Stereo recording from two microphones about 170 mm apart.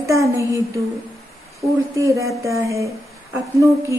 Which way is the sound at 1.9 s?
20° right (ahead or behind).